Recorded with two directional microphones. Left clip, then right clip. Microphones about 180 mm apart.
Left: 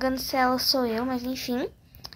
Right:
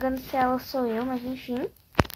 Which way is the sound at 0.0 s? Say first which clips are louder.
Left 1 dB; 20° left (ahead or behind).